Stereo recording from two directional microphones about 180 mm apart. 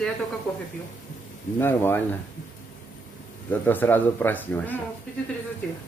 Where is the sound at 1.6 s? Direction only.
10° left (ahead or behind).